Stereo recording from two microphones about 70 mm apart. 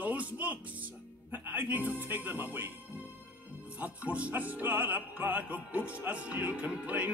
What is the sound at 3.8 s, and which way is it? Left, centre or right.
Opera, right.